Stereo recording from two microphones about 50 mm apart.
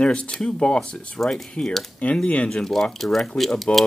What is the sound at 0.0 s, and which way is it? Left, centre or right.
Speech, centre.